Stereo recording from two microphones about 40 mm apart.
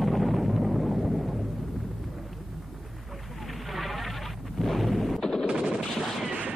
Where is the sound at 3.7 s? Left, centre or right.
Centre.